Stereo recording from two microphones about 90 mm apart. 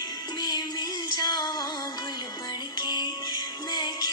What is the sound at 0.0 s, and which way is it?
Music, 50° left (ahead or behind).